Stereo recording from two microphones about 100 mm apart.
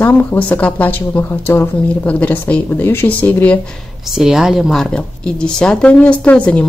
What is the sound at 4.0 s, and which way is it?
Speech, 5° right (ahead or behind).